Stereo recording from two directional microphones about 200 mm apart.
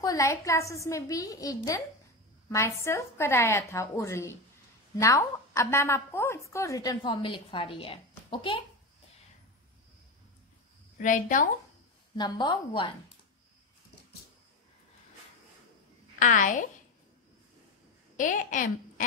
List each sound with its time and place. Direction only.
0.0 s a woman's voice: 15° left (ahead or behind)
11.0 s a woman's voice: 40° left (ahead or behind)
12.2 s a woman's voice: 20° left (ahead or behind)
16.2 s a woman's voice: 40° left (ahead or behind)
18.1 s a woman's voice: 40° left (ahead or behind)